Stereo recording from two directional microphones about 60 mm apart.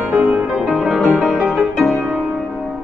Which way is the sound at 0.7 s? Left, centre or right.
Centre.